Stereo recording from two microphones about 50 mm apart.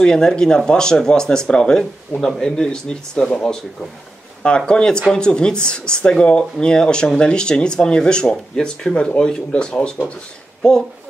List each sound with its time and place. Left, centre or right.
0.0 s speech: centre